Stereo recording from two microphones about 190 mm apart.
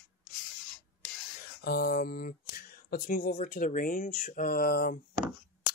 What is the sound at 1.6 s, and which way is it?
Speech, 55° left (ahead or behind).